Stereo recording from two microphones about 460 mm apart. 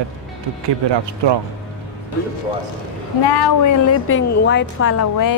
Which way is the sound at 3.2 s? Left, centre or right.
Left.